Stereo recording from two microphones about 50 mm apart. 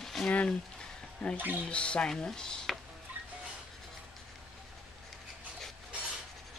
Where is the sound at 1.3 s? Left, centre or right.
Right.